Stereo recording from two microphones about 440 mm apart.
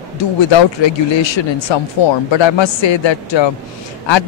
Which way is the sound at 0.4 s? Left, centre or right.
Left.